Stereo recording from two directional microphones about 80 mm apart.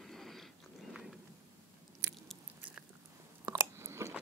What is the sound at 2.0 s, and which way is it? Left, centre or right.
Biting, right.